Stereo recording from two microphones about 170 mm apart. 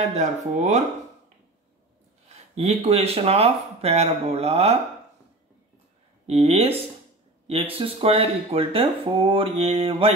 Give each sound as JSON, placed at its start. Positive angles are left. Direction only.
{"t": 0.1, "sound": "speech", "side_deg": -45}
{"t": 2.2, "sound": "speech", "side_deg": -40}
{"t": 6.2, "sound": "speech", "side_deg": -40}